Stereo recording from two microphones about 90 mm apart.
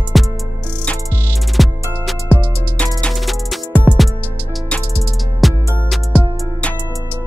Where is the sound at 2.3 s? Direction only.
15° right (ahead or behind).